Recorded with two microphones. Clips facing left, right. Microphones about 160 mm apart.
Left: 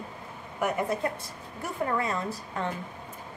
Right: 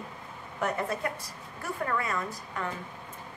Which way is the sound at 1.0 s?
30° left (ahead or behind).